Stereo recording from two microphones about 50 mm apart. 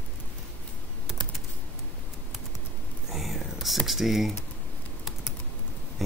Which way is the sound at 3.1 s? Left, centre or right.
Centre.